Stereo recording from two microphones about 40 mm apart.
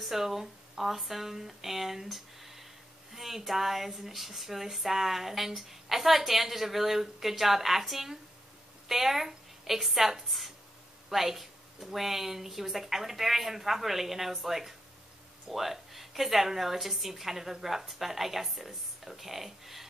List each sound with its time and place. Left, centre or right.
0.0 s a woman's voice: centre